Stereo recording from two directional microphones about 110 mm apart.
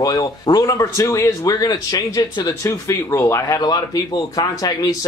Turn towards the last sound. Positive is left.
turn(degrees=35)  # may be behind; listen again after turning